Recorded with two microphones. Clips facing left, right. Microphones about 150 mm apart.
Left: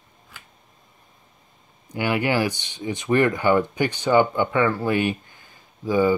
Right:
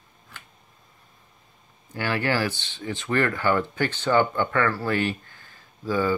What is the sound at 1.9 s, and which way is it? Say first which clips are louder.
Speech: left 3 dB; 15° left (ahead or behind).